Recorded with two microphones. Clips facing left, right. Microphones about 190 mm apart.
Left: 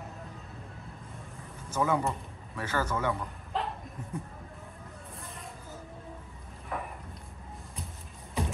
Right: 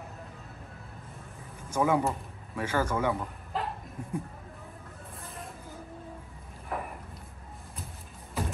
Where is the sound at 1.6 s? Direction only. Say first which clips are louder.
Right 2 dB; 10° right (ahead or behind).